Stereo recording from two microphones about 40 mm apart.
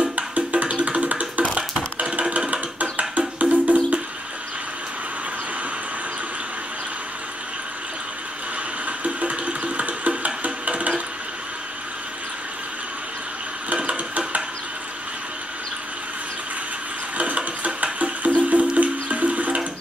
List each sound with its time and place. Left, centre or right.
0.0 s music: right
2.0 s music: right
8.8 s music: right
13.7 s a sound: right
17.9 s music: right